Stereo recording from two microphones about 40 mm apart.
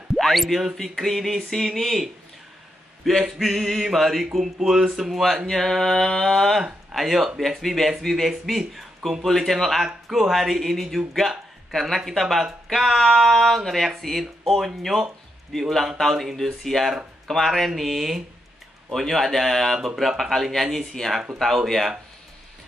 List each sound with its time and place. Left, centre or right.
0.1 s a sound: centre
0.8 s speech: centre
3.1 s speech: centre
5.5 s speech: centre
18.9 s speech: centre